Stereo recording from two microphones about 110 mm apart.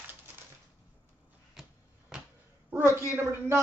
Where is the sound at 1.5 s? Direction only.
5° right (ahead or behind).